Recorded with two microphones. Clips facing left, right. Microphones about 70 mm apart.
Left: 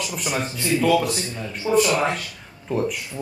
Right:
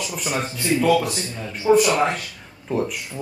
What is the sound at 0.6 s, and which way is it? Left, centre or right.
Speech, centre.